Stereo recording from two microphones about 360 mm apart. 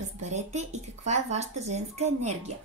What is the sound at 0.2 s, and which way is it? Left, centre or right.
Speech, centre.